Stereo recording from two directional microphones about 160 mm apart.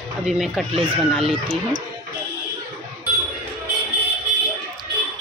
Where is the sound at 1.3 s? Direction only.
35° right (ahead or behind).